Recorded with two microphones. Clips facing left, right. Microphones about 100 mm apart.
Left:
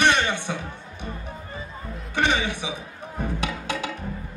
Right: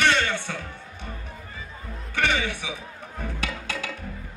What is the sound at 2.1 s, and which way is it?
Music, 20° left (ahead or behind).